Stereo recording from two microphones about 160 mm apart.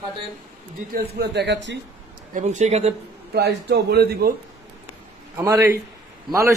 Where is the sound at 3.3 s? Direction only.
90° right.